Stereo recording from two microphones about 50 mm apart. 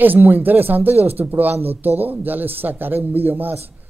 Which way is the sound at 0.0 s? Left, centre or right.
Right.